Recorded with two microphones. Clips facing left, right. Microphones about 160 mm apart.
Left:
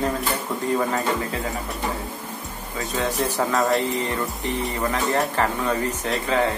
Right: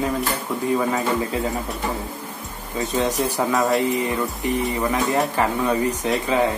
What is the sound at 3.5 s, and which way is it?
Speech, centre (ahead or behind).